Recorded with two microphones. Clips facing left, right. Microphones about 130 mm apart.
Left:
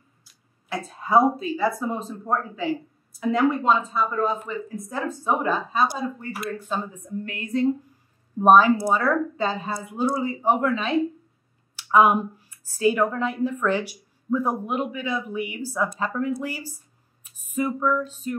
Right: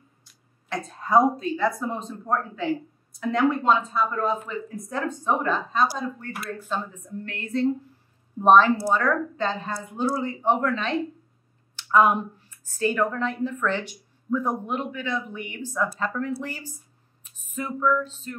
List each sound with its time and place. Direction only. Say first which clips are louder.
0.2 s speech: right 1 dB; 5° left (ahead or behind)